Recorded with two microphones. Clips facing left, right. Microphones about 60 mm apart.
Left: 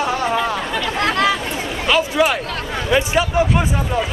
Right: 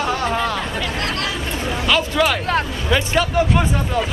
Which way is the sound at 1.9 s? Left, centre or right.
Centre.